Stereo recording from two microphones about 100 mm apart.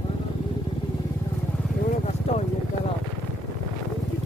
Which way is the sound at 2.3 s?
90° left.